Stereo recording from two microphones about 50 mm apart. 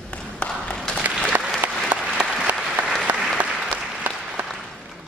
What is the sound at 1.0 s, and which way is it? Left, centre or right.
Applause, right.